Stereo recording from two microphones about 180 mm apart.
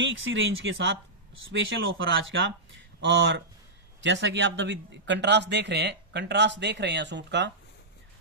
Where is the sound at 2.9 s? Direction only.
80° right.